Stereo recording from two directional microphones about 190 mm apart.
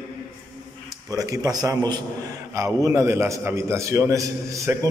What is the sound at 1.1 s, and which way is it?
A man's voice, 20° right (ahead or behind).